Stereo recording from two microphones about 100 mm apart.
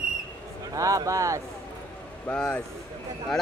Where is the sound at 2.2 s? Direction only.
15° left (ahead or behind).